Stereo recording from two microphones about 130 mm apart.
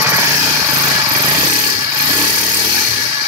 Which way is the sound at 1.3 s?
30° right (ahead or behind).